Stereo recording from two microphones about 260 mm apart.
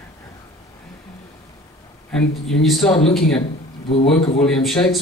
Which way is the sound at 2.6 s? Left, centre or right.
Centre.